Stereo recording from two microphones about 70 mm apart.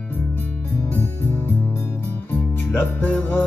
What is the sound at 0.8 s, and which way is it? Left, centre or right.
Music, left.